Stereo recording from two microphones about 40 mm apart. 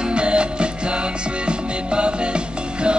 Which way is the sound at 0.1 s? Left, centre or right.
Right.